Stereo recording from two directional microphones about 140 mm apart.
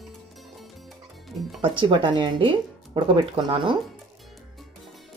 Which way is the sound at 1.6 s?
35° right (ahead or behind).